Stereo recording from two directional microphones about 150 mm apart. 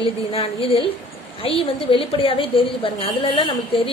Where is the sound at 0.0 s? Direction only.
40° left (ahead or behind).